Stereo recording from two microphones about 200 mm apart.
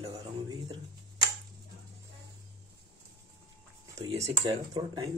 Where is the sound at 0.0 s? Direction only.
20° right (ahead or behind).